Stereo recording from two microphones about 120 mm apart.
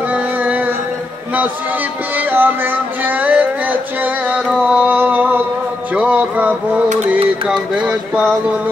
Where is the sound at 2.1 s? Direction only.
15° right (ahead or behind).